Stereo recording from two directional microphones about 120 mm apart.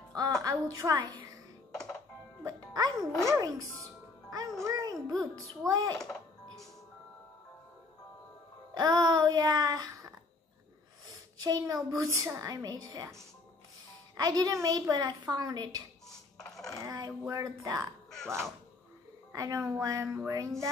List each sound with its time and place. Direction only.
0.4 s a woman's voice: 30° right (ahead or behind)
2.4 s a child's voice: 30° right (ahead or behind)
8.7 s music: 35° right (ahead or behind)
11.3 s a woman's voice: 30° right (ahead or behind)
14.1 s a woman's voice: 30° right (ahead or behind)
16.1 s coin: 5° left (ahead or behind)
16.8 s a sound: 30° right (ahead or behind)
17.3 s a woman's voice: 30° right (ahead or behind)
19.3 s a woman's voice: 30° right (ahead or behind)